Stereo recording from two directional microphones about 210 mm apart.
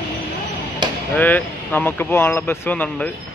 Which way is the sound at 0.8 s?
20° right (ahead or behind).